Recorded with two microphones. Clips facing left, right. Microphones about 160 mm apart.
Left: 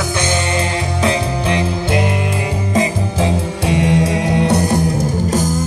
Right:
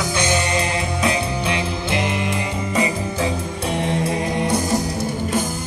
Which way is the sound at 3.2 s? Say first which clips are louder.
Left 7 dB; 90° left.